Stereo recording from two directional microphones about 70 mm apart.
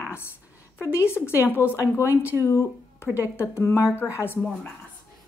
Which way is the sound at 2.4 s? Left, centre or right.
Left.